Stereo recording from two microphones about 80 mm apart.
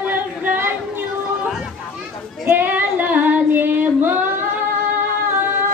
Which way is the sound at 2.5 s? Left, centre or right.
Right.